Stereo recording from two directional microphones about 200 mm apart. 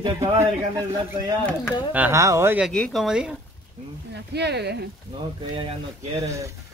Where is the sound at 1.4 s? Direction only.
5° left (ahead or behind).